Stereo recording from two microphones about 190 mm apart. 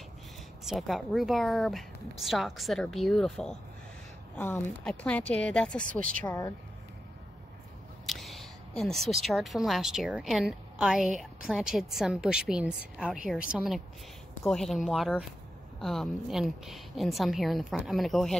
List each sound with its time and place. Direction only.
0.7 s speech: centre (ahead or behind)
6.2 s speech: 15° left (ahead or behind)
8.1 s speech: centre (ahead or behind)